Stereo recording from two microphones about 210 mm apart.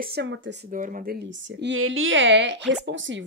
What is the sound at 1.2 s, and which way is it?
Speech, 60° right (ahead or behind).